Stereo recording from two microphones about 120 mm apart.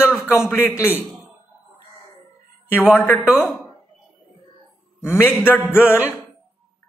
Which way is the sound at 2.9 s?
15° left (ahead or behind).